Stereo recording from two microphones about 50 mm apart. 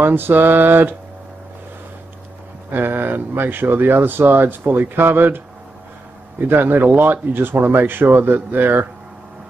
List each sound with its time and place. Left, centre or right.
0.0 s speech: right
2.7 s speech: right
6.4 s speech: right